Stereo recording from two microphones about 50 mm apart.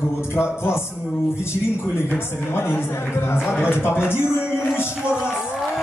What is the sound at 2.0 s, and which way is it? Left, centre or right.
Speech, left.